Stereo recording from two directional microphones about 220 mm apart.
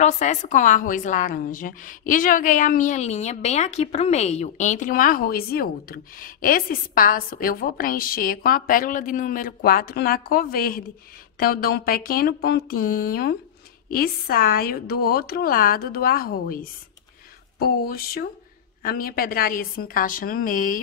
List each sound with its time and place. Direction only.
0.0 s a woman's voice: 35° left (ahead or behind)